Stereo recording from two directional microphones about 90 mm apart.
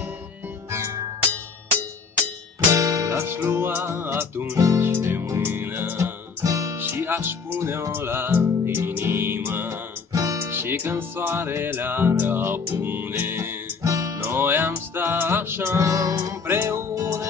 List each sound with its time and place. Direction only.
0.7 s music: 30° right (ahead or behind)
2.7 s music: 35° right (ahead or behind)
4.6 s music: 40° right (ahead or behind)
4.8 s music: 25° right (ahead or behind)
6.4 s music: 40° right (ahead or behind)
6.8 s music: 25° right (ahead or behind)
10.1 s music: 40° right (ahead or behind)
10.5 s music: 25° right (ahead or behind)
13.8 s music: 40° right (ahead or behind)
14.2 s music: 25° right (ahead or behind)